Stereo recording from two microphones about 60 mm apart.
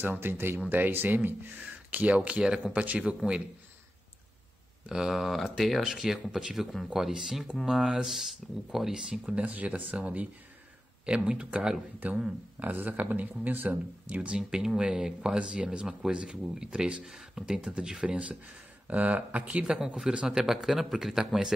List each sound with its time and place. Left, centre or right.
0.0 s speech: right
4.8 s speech: centre
11.2 s speech: centre
12.5 s speech: right; by 21.5 s centre